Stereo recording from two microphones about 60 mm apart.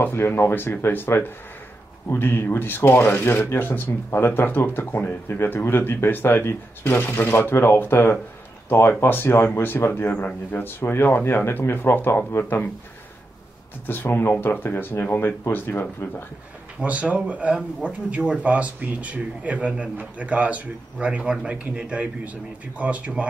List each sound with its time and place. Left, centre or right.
0.0 s speech: left
13.8 s speech: left
16.8 s speech: right